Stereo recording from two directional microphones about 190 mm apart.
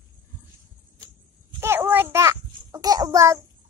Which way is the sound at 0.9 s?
15° right (ahead or behind).